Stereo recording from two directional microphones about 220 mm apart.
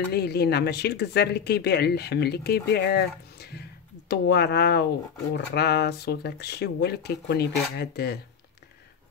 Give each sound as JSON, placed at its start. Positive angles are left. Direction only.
{"t": 0.1, "sound": "speech", "side_deg": 45}